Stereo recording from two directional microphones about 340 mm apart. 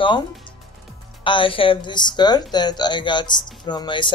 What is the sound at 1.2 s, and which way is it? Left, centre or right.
Speech, centre.